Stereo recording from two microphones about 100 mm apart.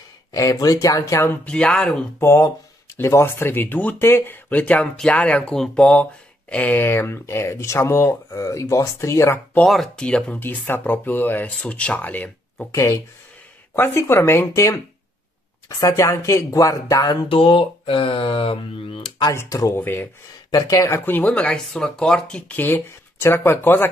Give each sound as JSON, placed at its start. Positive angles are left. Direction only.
{"t": 0.3, "sound": "speech", "side_deg": 40}
{"t": 1.4, "sound": "speech", "side_deg": 10}
{"t": 2.1, "sound": "speech", "side_deg": 30}
{"t": 9.7, "sound": "speech", "side_deg": 5}
{"t": 12.7, "sound": "speech", "side_deg": 30}
{"t": 15.8, "sound": "speech", "side_deg": 35}
{"t": 17.3, "sound": "speech", "side_deg": 70}
{"t": 19.3, "sound": "speech", "side_deg": 30}
{"t": 19.8, "sound": "speech", "side_deg": 20}
{"t": 20.5, "sound": "speech", "side_deg": 35}
{"t": 21.0, "sound": "speech", "side_deg": 20}